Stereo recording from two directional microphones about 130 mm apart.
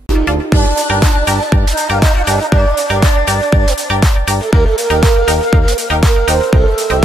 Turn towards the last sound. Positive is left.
turn(degrees=0)  # may be behind; listen again after turning